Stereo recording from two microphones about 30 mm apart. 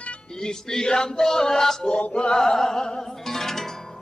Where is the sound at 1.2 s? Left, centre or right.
Centre.